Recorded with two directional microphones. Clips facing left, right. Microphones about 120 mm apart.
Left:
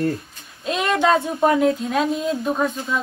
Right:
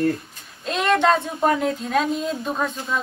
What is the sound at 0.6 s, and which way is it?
Speech, centre (ahead or behind).